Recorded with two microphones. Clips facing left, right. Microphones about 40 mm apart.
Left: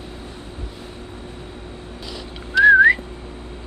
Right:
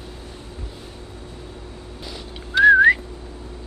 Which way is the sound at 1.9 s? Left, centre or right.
Left.